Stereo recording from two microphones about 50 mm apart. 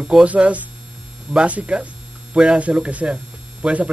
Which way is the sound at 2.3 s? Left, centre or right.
Centre.